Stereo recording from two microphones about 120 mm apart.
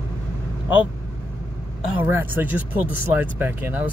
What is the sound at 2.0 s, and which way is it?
Speech, 15° right (ahead or behind).